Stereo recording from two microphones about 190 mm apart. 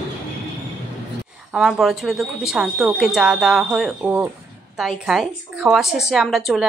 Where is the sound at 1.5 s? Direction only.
Centre (ahead or behind).